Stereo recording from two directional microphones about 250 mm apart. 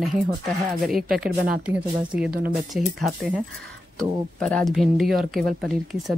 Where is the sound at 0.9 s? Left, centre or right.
Centre.